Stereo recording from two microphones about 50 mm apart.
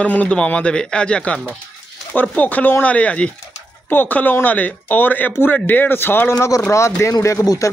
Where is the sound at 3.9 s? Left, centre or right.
Left.